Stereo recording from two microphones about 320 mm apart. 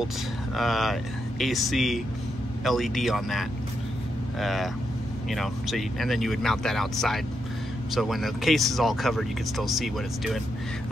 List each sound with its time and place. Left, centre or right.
0.6 s speech: centre